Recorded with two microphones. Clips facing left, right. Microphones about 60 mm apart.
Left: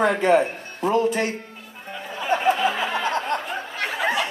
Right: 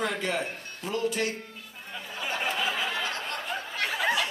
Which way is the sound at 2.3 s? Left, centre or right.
Centre.